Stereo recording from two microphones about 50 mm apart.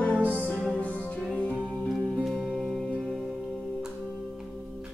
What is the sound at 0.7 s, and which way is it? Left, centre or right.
Music, left.